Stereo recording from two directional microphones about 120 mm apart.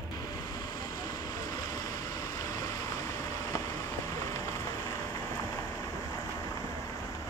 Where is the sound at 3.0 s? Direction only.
25° left (ahead or behind).